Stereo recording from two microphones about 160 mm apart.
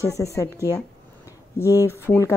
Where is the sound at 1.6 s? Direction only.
20° left (ahead or behind).